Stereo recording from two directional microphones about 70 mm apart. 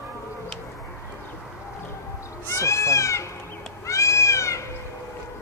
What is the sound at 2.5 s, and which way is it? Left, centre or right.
Cat, left.